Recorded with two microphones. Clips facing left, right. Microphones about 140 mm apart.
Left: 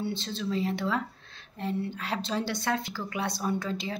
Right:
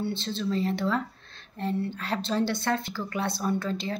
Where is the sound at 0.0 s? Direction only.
15° left (ahead or behind).